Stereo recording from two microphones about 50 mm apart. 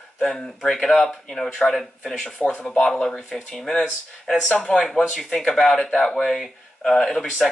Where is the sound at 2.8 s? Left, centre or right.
Centre.